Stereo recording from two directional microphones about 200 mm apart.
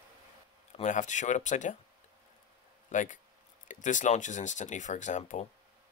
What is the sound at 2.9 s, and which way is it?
Speech, 40° left (ahead or behind).